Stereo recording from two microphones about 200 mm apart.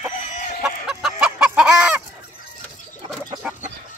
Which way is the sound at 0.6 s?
Centre (ahead or behind).